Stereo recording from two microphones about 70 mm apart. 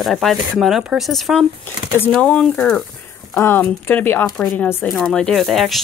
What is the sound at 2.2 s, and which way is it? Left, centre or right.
Speech, centre.